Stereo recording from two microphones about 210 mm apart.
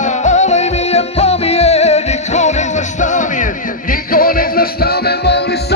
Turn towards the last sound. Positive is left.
turn(degrees=50)  # may be behind; listen again after turning